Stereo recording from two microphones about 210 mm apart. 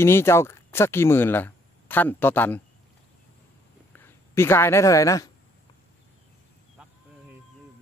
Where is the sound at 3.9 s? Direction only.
10° left (ahead or behind).